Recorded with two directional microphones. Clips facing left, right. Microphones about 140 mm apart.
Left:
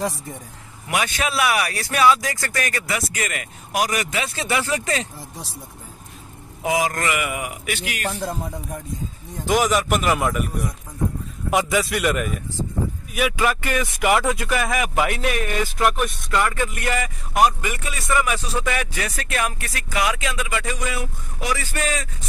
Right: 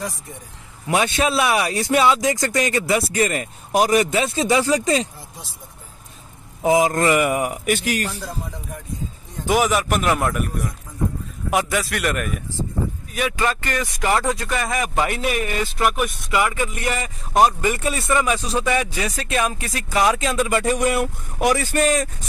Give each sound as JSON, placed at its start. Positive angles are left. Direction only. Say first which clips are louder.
{"t": 0.8, "sound": "speech", "louder": "right 4 dB", "side_deg": -25}
{"t": 4.4, "sound": "speech", "louder": "right 5 dB", "side_deg": -15}
{"t": 6.6, "sound": "speech", "louder": "right 5 dB", "side_deg": -30}
{"t": 8.1, "sound": "speech", "louder": "left 4 dB", "side_deg": 40}
{"t": 9.5, "sound": "speech", "louder": "even", "side_deg": -5}
{"t": 16.7, "sound": "speech", "louder": "even", "side_deg": -25}
{"t": 19.9, "sound": "speech", "louder": "right 4 dB", "side_deg": -35}
{"t": 20.7, "sound": "speech", "louder": "right 8 dB", "side_deg": -60}